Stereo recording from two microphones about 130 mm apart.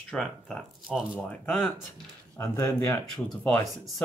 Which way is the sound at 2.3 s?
20° left (ahead or behind).